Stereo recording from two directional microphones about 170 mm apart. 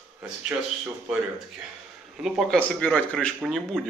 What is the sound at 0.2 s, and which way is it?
Speech, 5° right (ahead or behind).